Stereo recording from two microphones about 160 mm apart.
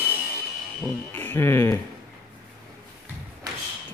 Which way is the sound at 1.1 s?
15° left (ahead or behind).